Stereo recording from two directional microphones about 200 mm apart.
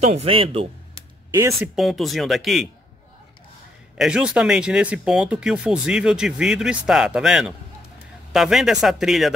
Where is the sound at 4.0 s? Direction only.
5° right (ahead or behind).